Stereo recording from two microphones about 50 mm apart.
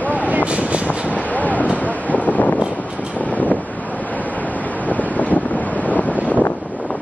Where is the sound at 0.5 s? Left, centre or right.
Right.